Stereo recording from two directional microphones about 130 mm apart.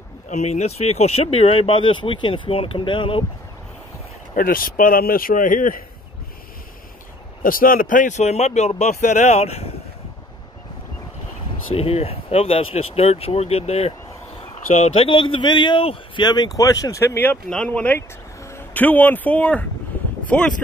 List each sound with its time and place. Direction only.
0.3 s speech: 60° left (ahead or behind); by 3.3 s 40° left (ahead or behind)
4.4 s a man's voice: 90° left
7.4 s a man's voice: 90° left; by 9.8 s 50° left (ahead or behind)
11.7 s a man's voice: 50° left (ahead or behind)
16.3 s speech: 30° left (ahead or behind); by 20.5 s 10° left (ahead or behind)